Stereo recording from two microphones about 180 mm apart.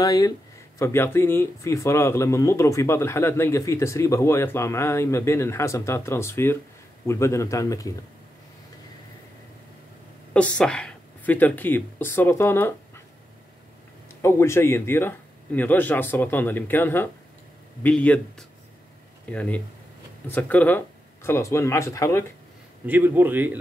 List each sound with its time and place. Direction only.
0.0 s speech: 20° left (ahead or behind)
10.3 s speech: 5° left (ahead or behind)
14.2 s speech: 15° left (ahead or behind)
19.2 s speech: 10° left (ahead or behind)
22.8 s a man's voice: 10° right (ahead or behind)